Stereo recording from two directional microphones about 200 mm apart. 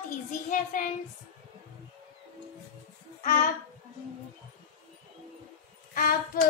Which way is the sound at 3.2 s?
40° left (ahead or behind).